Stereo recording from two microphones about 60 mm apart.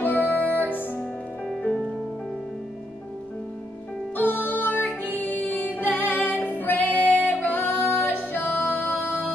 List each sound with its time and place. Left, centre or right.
0.3 s music: left
4.2 s music: left